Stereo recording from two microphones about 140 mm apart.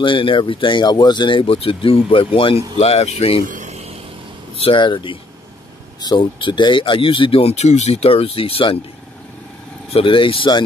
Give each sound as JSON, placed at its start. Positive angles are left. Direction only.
{"t": 0.0, "sound": "speech", "side_deg": 35}
{"t": 3.4, "sound": "vehicle", "side_deg": -60}
{"t": 4.6, "sound": "speech", "side_deg": 35}
{"t": 9.9, "sound": "speech", "side_deg": 40}